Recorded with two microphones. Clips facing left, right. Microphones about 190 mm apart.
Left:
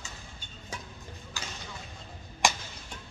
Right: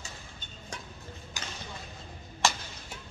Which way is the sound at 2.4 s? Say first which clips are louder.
Left 1 dB; 15° left (ahead or behind).